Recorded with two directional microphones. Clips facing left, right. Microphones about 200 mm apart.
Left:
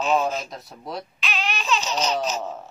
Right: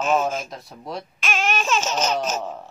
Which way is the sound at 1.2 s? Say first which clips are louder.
Right 8 dB; 45° right (ahead or behind).